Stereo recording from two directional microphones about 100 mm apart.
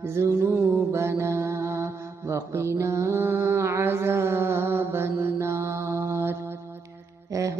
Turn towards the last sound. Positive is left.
turn(degrees=-35)  # may be behind; listen again after turning